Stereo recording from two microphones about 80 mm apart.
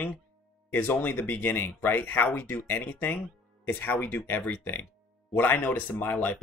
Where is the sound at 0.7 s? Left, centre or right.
Left.